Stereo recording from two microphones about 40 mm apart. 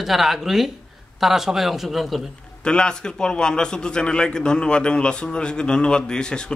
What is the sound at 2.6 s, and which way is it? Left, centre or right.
A man's voice, left.